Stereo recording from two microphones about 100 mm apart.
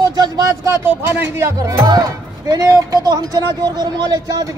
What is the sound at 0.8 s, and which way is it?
A man's voice, 25° right (ahead or behind).